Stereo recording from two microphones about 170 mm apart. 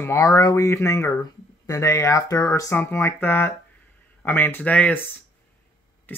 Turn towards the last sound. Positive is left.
turn(degrees=10)  # may be behind; listen again after turning